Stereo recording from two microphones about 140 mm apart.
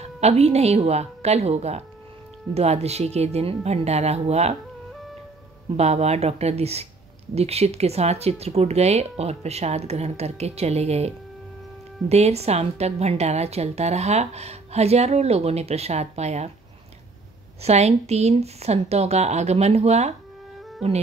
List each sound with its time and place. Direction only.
0.0 s a woman's voice: 50° right (ahead or behind)
5.8 s a woman's voice: 50° right (ahead or behind)
17.6 s a woman's voice: 50° right (ahead or behind)